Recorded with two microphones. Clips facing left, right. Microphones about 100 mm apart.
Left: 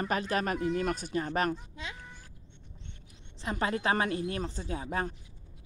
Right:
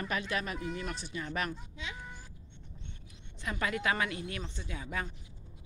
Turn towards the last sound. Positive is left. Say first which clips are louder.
# left 5 dB
turn(degrees=40)  # may be behind; listen again after turning